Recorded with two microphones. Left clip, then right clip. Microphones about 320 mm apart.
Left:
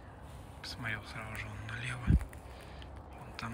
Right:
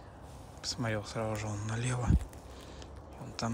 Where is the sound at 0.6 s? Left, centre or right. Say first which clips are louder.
Right 4 dB; centre.